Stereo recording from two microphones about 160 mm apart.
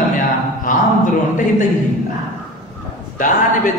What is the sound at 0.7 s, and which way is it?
Speech, 55° left (ahead or behind).